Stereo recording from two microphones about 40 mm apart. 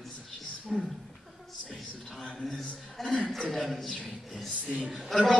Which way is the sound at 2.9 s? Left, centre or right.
Centre.